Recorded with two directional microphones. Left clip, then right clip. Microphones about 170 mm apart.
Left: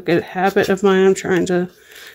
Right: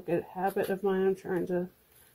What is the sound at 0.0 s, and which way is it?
Speech, 50° left (ahead or behind).